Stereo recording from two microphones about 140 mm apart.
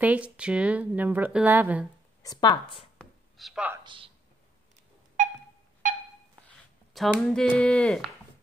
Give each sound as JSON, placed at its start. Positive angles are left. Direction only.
{"t": 0.0, "sound": "a woman's voice", "side_deg": -10}
{"t": 2.2, "sound": "speech", "side_deg": 30}
{"t": 3.0, "sound": "a sound", "side_deg": 0}
{"t": 3.8, "sound": "a man's voice", "side_deg": -35}
{"t": 5.8, "sound": "a sound", "side_deg": -65}
{"t": 6.9, "sound": "speech", "side_deg": 0}